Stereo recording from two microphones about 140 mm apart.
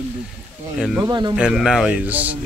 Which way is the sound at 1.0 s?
30° right (ahead or behind).